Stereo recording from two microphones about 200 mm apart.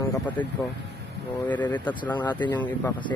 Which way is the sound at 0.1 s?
10° left (ahead or behind).